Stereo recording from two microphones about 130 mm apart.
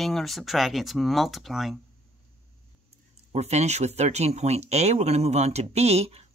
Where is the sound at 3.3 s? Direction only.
55° right (ahead or behind).